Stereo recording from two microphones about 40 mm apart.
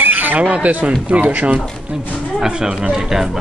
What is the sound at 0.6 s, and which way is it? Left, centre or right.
Speech, right.